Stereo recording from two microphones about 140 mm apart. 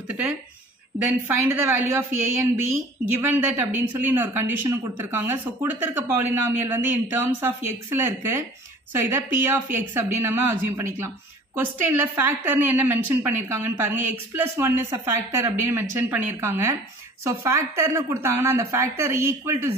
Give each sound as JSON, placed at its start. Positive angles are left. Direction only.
{"t": 0.9, "sound": "a woman's voice", "side_deg": -15}
{"t": 3.1, "sound": "a woman's voice", "side_deg": -15}